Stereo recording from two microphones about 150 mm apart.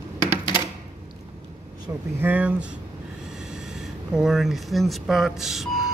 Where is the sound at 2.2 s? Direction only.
10° right (ahead or behind).